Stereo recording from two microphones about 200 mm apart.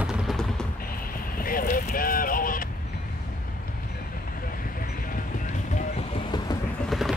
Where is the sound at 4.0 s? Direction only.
45° left (ahead or behind); by 6.6 s 25° left (ahead or behind).